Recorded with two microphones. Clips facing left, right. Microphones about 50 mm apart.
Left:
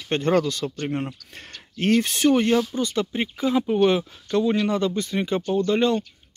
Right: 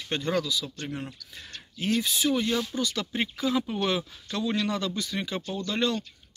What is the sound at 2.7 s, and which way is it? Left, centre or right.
Speech, left.